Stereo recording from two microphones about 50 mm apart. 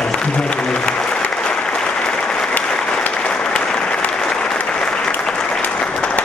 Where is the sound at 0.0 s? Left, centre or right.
Centre.